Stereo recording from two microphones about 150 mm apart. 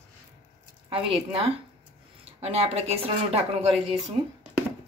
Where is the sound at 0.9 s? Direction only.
40° right (ahead or behind).